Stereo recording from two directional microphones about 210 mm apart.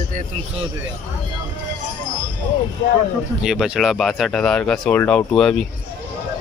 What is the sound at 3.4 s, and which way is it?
Speech, centre (ahead or behind).